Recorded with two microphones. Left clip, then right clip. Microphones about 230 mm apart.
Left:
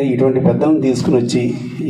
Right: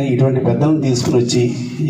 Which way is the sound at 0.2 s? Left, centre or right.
Left.